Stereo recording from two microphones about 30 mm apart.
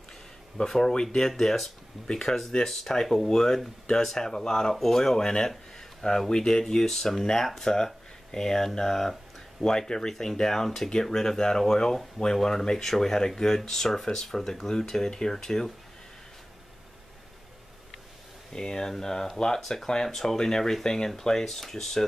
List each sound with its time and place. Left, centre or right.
0.7 s speech: left
1.3 s speech: centre
8.9 s speech: centre
9.6 s speech: left
18.5 s speech: left